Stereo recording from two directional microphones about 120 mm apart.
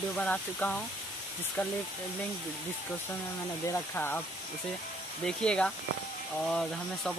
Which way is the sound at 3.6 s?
20° left (ahead or behind).